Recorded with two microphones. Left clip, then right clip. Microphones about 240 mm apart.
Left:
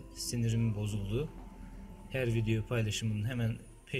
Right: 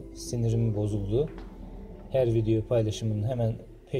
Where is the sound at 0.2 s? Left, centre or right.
Right.